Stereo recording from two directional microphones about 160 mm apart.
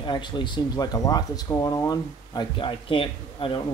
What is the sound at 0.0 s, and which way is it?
Speech, 30° left (ahead or behind).